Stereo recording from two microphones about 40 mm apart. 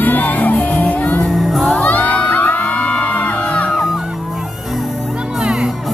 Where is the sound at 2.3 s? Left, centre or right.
Left.